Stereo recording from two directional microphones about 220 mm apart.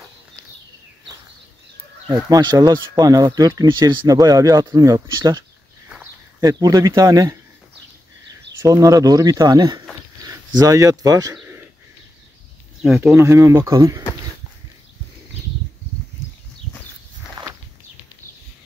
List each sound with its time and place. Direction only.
2.1 s speech: 15° right (ahead or behind)
8.6 s speech: 15° right (ahead or behind)
11.3 s a sound: 10° right (ahead or behind)
12.8 s speech: 5° right (ahead or behind)
17.4 s walk: 20° right (ahead or behind)